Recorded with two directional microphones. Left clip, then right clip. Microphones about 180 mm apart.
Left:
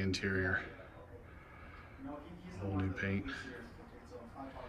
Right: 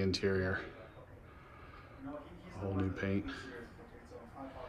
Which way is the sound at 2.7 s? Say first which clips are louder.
Right 1 dB; 15° right (ahead or behind).